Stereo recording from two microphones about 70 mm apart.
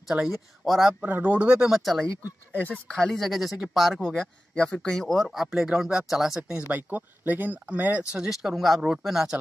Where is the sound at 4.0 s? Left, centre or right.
Centre.